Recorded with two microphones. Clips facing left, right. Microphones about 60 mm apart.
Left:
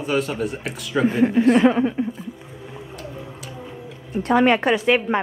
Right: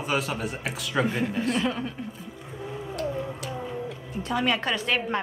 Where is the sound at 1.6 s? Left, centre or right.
Left.